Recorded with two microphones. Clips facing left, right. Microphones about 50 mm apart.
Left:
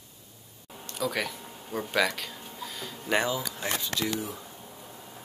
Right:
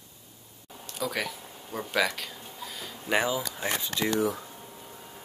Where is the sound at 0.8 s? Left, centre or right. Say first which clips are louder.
Left 1 dB; centre.